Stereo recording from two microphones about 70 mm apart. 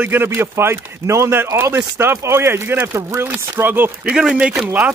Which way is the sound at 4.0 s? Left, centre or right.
Centre.